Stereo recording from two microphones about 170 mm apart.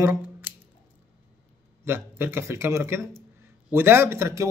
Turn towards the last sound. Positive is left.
turn(degrees=-15)  # may be behind; listen again after turning